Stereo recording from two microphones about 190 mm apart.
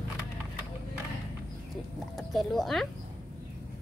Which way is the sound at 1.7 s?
Centre (ahead or behind).